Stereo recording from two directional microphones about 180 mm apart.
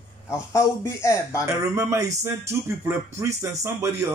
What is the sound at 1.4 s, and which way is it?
Speech, 15° right (ahead or behind).